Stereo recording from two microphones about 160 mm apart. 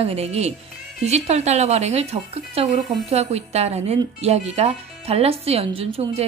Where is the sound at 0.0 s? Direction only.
40° right (ahead or behind).